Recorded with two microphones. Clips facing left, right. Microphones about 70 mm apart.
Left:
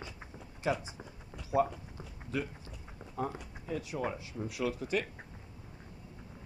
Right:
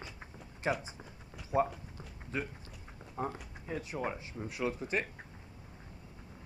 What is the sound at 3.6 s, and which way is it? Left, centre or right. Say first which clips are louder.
Speech: left 1 dB; right.